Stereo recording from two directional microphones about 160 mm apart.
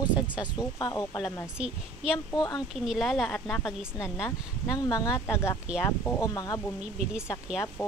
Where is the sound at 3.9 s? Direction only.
15° left (ahead or behind).